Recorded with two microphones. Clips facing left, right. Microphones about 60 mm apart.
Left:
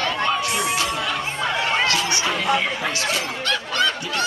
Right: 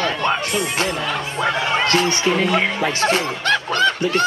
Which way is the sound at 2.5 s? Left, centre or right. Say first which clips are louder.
Right 3 dB; right.